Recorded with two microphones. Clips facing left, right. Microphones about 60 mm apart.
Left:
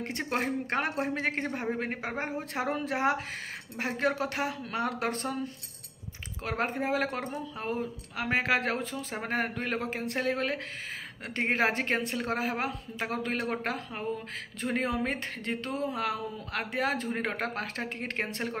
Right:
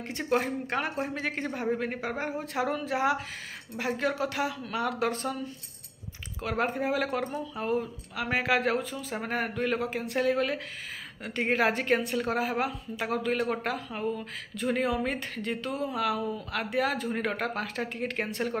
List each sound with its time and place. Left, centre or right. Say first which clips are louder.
0.0 s a woman's voice: right 3 dB; left